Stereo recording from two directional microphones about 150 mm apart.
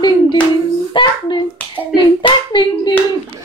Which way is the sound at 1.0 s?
30° left (ahead or behind).